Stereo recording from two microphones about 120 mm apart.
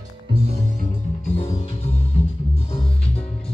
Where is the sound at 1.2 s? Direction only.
60° left (ahead or behind).